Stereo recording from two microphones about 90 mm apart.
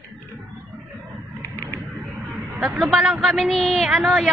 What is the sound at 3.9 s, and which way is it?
Speech, 15° right (ahead or behind).